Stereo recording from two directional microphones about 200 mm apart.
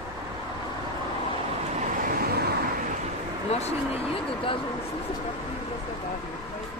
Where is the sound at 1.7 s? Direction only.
40° right (ahead or behind).